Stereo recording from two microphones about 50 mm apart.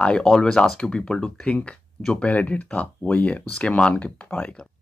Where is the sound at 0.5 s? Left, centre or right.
Centre.